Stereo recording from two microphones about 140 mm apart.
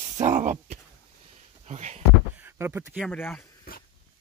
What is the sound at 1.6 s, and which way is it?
Speech, 55° right (ahead or behind).